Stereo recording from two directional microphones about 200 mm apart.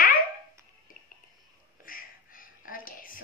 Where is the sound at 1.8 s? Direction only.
45° left (ahead or behind).